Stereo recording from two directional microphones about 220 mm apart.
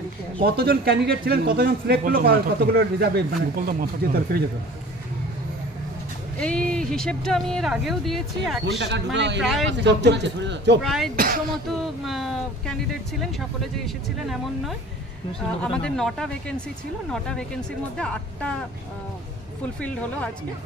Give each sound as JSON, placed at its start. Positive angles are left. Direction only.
{"t": 0.4, "sound": "speech", "side_deg": -45}
{"t": 6.4, "sound": "speech", "side_deg": 5}
{"t": 8.6, "sound": "speech", "side_deg": -50}
{"t": 9.4, "sound": "speech", "side_deg": 0}
{"t": 9.7, "sound": "speech", "side_deg": -50}
{"t": 10.8, "sound": "speech", "side_deg": 0}
{"t": 11.1, "sound": "speech", "side_deg": -40}
{"t": 11.6, "sound": "speech", "side_deg": 0}
{"t": 19.8, "sound": "speech", "side_deg": 5}